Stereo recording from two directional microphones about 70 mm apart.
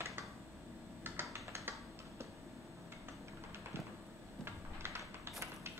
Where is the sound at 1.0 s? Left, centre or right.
Right.